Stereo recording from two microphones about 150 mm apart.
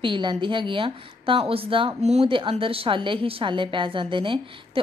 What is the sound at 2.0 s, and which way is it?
A woman's voice, 45° right (ahead or behind).